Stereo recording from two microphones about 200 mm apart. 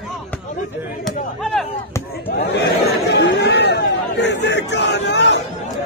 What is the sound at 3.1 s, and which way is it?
Chatter, 60° left (ahead or behind).